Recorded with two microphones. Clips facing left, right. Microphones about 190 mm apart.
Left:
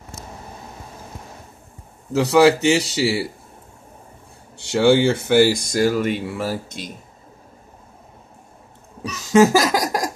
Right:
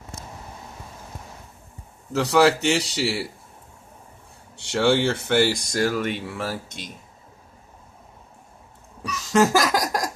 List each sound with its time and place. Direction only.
2.1 s speech: 5° left (ahead or behind)
4.6 s speech: 5° left (ahead or behind)
9.3 s a sound: 5° left (ahead or behind)